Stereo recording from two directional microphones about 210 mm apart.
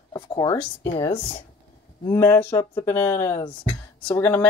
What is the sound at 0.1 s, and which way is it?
Speech, 20° left (ahead or behind).